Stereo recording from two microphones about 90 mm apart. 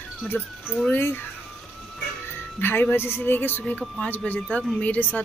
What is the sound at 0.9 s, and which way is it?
Speech, 25° left (ahead or behind).